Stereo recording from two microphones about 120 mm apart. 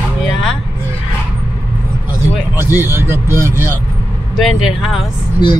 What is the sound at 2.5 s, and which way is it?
Speech, 20° right (ahead or behind).